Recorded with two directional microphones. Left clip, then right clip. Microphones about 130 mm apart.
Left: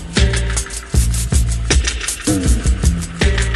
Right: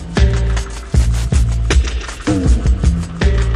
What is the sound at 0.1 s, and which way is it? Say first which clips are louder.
Music: left 2 dB; 25° left (ahead or behind).